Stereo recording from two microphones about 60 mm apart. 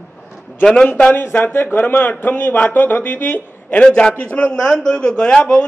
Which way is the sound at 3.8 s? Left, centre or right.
Centre.